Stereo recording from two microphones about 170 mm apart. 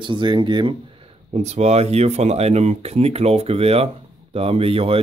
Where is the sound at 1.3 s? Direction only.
40° right (ahead or behind).